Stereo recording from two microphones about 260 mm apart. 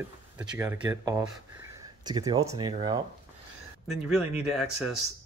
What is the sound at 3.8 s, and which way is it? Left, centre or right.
Speech, centre.